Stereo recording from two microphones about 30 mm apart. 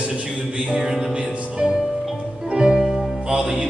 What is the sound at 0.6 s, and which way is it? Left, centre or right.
Music, right.